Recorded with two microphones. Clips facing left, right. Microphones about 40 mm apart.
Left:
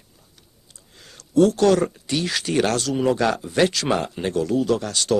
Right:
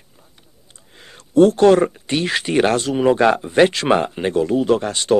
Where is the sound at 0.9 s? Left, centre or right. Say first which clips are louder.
Right 4 dB; right.